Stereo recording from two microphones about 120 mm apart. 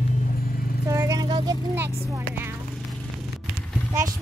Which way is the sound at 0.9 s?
25° right (ahead or behind).